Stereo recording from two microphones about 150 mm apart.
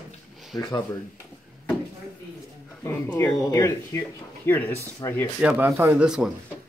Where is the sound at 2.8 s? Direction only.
20° left (ahead or behind).